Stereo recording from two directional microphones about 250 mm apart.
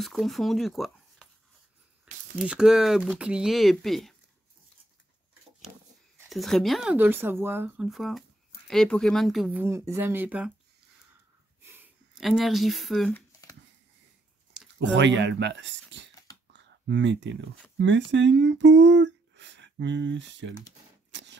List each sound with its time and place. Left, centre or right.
0.0 s speech: centre
2.3 s speech: centre
6.1 s speech: centre
11.6 s speech: centre
14.8 s speech: right
16.5 s a sound: right
17.7 s speech: right
21.1 s a sound: right